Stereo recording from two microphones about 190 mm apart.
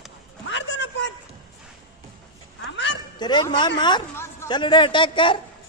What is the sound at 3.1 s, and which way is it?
Speech, 25° left (ahead or behind).